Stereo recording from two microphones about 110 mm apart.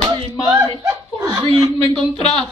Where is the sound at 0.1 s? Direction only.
35° right (ahead or behind).